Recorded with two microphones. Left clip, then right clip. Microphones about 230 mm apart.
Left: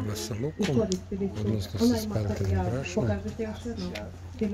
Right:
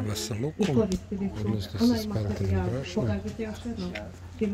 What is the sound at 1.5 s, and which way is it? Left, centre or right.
Speech, centre.